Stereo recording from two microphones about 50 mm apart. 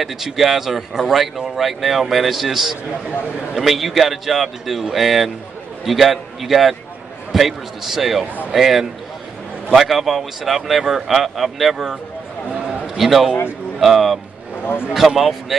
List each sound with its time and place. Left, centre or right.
0.0 s a man's voice: centre
14.6 s a man's voice: left
15.0 s speech: centre